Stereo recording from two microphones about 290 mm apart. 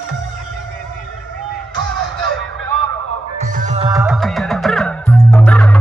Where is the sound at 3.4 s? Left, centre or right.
Right.